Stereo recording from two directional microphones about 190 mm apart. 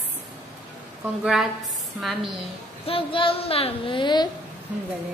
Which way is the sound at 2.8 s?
30° left (ahead or behind).